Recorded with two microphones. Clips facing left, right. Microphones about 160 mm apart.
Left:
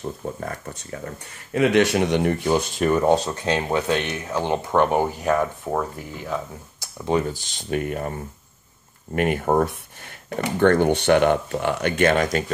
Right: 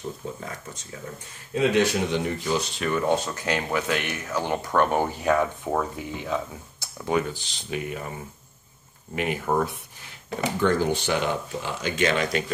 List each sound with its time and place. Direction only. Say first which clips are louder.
0.2 s speech: left 5 dB; 55° left (ahead or behind); by 5.0 s 20° left (ahead or behind)
5.2 s speech: left 1 dB; 5° left (ahead or behind)
7.1 s speech: left 3 dB; 35° left (ahead or behind); by 8.1 s 50° left (ahead or behind)
9.1 s speech: left 5 dB; 55° left (ahead or behind)
10.6 s speech: left 6 dB; 60° left (ahead or behind); by 12.4 s 45° left (ahead or behind)